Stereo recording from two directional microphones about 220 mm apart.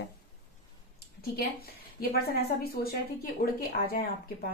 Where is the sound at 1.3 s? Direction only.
45° left (ahead or behind).